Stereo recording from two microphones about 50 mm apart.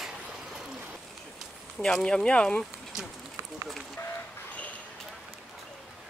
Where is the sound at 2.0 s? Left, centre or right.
Left.